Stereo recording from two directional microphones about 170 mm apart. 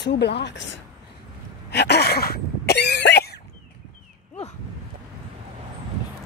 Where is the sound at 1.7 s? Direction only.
75° left (ahead or behind).